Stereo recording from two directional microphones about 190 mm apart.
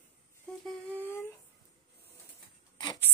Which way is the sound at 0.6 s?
10° left (ahead or behind).